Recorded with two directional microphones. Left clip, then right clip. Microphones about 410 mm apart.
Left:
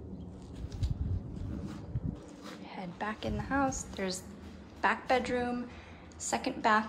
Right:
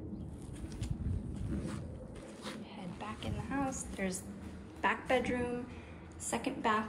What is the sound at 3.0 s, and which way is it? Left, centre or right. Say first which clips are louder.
Speech: left 7 dB; centre.